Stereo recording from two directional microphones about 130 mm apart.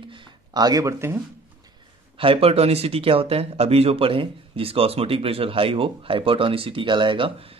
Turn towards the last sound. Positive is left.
turn(degrees=-45)  # may be behind; listen again after turning